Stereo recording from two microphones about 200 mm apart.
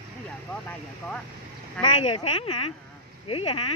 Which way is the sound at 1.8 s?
30° left (ahead or behind).